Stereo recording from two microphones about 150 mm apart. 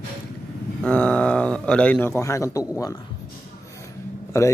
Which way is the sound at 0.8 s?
5° left (ahead or behind).